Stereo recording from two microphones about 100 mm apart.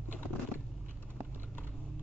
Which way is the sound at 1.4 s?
20° left (ahead or behind).